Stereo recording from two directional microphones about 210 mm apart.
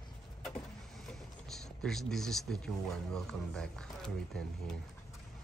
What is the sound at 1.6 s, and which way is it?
A man's voice, centre (ahead or behind).